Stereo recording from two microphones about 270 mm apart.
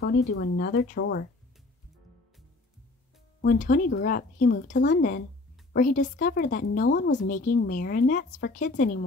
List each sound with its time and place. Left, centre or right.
0.0 s speech: left
3.3 s speech: left